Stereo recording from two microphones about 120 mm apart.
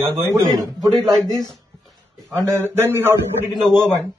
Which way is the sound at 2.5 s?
20° right (ahead or behind).